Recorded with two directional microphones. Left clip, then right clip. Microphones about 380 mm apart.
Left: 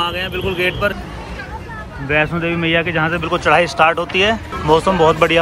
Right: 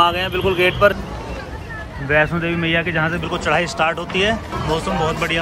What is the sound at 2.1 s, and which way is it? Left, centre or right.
A man's voice, centre.